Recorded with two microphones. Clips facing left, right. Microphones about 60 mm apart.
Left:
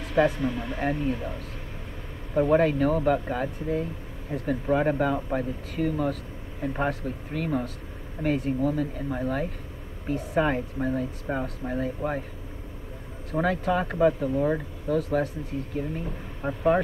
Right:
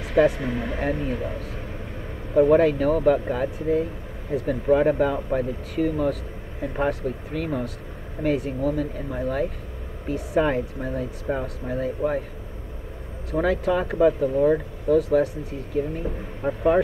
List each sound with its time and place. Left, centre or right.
0.0 s a sound: centre
0.4 s speech: right
0.7 s speech: centre
2.5 s speech: centre
13.3 s speech: centre
16.4 s speech: centre